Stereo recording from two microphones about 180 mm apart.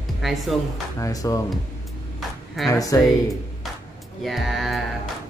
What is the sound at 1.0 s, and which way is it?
Speech, 20° left (ahead or behind).